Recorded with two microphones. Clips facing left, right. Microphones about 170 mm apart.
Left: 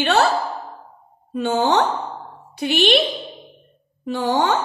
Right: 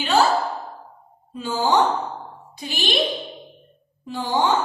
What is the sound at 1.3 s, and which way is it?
A woman's voice, 70° left (ahead or behind).